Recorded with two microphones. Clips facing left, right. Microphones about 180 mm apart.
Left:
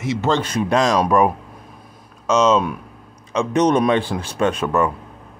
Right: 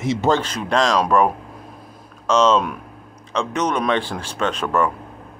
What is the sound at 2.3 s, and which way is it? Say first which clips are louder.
Speech: even; 5° left (ahead or behind).